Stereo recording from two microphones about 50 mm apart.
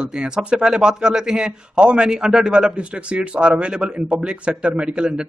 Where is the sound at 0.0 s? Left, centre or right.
Centre.